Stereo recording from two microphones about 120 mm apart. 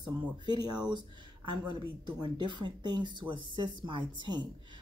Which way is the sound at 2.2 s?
40° right (ahead or behind).